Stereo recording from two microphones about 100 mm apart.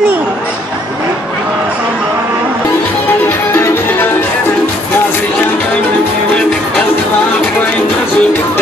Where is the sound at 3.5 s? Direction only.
25° left (ahead or behind).